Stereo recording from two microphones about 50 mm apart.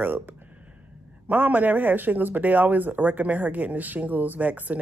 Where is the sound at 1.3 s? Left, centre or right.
Right.